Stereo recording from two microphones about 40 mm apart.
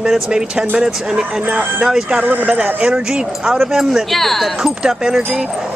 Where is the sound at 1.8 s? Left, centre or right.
Centre.